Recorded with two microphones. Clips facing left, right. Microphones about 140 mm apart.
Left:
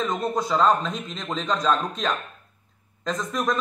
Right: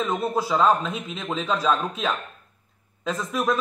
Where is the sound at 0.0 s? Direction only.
5° right (ahead or behind).